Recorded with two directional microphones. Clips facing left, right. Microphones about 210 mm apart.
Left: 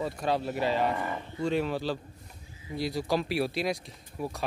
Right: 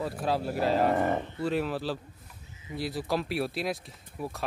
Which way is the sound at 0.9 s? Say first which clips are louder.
Right 7 dB; 50° right (ahead or behind).